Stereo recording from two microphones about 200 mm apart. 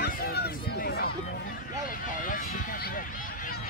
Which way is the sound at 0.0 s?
50° left (ahead or behind).